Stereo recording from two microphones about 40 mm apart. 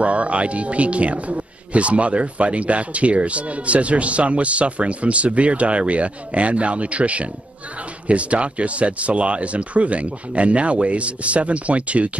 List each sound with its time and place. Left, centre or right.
0.0 s a man's voice: right